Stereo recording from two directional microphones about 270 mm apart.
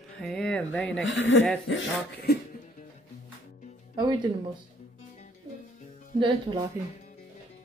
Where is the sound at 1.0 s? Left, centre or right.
Left.